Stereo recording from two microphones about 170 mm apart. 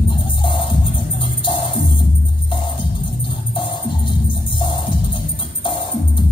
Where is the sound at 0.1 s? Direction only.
30° left (ahead or behind).